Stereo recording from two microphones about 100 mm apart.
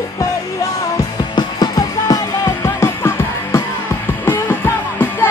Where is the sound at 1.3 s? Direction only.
45° left (ahead or behind).